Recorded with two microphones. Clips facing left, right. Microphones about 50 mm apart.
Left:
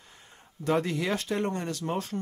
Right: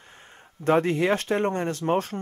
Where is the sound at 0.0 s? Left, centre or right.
Right.